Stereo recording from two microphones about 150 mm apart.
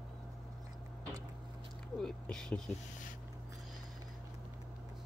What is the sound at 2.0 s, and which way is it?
Speech, 5° left (ahead or behind).